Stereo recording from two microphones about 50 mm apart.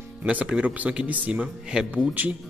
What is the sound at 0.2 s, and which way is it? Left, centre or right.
Speech, right.